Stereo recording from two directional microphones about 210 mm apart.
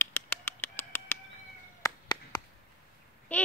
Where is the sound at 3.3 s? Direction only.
10° left (ahead or behind).